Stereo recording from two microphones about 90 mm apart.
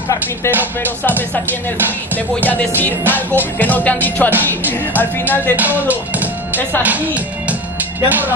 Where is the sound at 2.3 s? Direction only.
20° left (ahead or behind).